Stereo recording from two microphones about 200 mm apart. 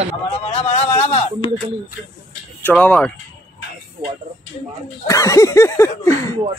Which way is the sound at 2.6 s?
5° left (ahead or behind).